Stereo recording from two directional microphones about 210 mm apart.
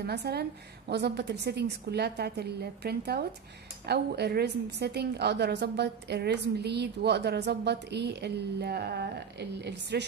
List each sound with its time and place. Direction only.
0.0 s a woman's voice: 50° right (ahead or behind)